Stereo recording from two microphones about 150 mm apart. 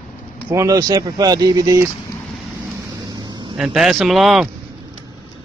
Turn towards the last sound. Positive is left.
turn(degrees=0)  # may be behind; listen again after turning